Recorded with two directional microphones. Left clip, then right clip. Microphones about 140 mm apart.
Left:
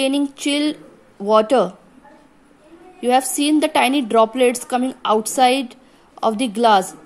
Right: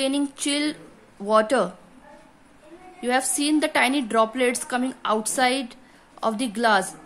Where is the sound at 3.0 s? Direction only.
15° left (ahead or behind).